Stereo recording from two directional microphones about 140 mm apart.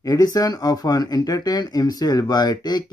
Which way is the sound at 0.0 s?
25° left (ahead or behind).